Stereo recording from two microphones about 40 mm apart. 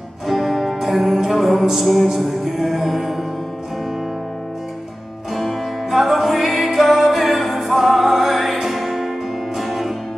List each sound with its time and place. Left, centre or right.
0.3 s music: centre
5.3 s music: centre
5.9 s music: centre